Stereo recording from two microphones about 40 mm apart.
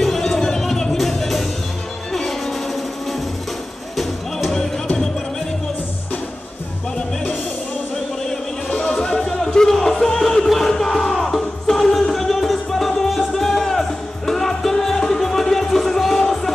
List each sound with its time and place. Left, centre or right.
0.0 s music: centre
8.7 s music: left